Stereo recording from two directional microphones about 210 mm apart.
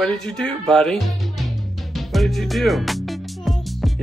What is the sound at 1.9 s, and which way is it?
Music, centre (ahead or behind).